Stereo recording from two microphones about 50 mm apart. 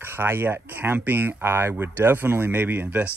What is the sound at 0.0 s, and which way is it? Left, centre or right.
Speech, right.